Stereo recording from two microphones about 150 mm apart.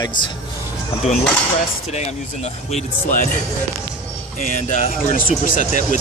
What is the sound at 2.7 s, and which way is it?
Speech, 60° left (ahead or behind).